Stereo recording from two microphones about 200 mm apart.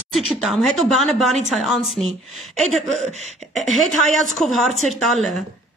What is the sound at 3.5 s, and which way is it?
A woman's voice, centre (ahead or behind).